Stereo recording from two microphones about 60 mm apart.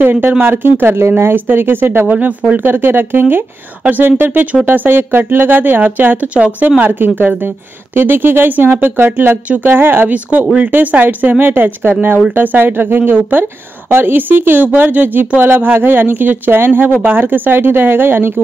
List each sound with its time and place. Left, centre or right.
0.0 s a woman's voice: right
6.2 s speech: centre
6.8 s a woman's voice: right
16.9 s a woman's voice: right